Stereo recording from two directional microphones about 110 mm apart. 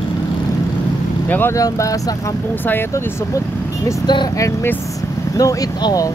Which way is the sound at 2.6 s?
20° left (ahead or behind).